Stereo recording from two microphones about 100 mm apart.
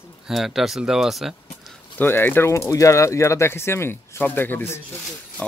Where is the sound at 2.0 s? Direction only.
20° left (ahead or behind).